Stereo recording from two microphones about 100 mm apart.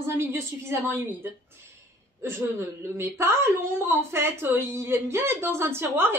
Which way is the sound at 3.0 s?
25° right (ahead or behind).